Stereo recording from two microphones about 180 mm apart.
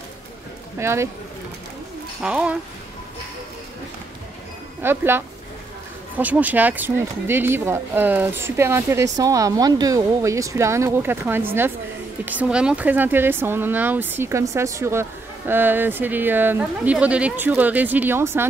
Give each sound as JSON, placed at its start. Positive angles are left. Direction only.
{"t": 0.7, "sound": "speech", "side_deg": -15}
{"t": 2.2, "sound": "speech", "side_deg": -5}
{"t": 4.8, "sound": "speech", "side_deg": -15}